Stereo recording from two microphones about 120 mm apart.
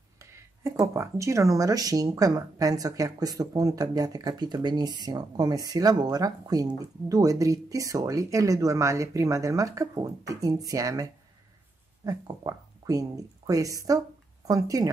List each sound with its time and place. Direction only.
0.2 s speech: 25° right (ahead or behind)